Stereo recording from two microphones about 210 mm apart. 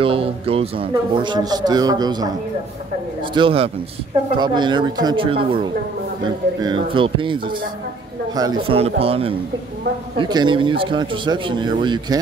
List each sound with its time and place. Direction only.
0.0 s a man's voice: 25° right (ahead or behind)